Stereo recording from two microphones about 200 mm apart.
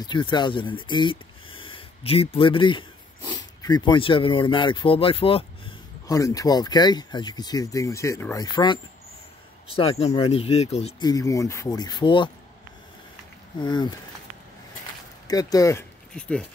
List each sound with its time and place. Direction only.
0.0 s speech: 20° left (ahead or behind)
6.0 s speech: 15° left (ahead or behind)
9.8 s speech: 30° left (ahead or behind)
11.1 s speech: 15° left (ahead or behind)
13.6 s speech: 20° left (ahead or behind)
15.2 s speech: 20° left (ahead or behind)
16.2 s speech: 5° left (ahead or behind)